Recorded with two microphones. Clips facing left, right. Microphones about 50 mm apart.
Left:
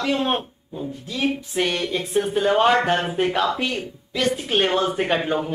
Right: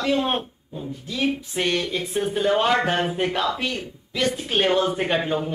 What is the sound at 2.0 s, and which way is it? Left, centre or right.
Speech, left.